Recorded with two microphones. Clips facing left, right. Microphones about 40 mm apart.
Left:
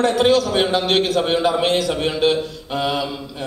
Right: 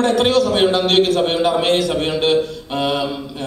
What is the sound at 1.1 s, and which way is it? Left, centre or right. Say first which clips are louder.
A man's voice: right 1 dB; right.